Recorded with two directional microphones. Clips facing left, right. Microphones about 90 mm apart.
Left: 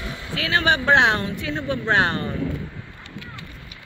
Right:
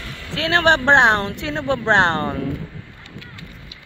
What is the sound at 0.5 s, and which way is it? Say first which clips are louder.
Speech: right 4 dB; 65° right (ahead or behind).